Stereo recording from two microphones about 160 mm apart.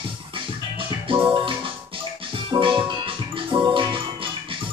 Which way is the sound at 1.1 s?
35° right (ahead or behind).